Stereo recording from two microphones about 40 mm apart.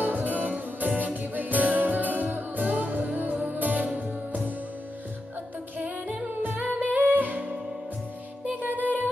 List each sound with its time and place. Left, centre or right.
0.0 s music: right
5.8 s music: right